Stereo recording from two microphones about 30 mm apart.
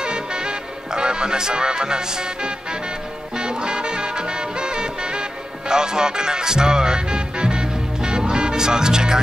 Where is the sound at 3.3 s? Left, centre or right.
Right.